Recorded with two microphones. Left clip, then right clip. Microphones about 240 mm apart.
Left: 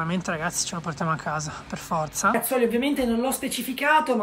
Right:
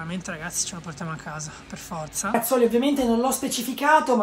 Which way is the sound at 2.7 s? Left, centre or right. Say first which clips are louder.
Right 2 dB; centre.